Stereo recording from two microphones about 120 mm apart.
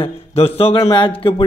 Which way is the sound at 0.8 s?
40° left (ahead or behind).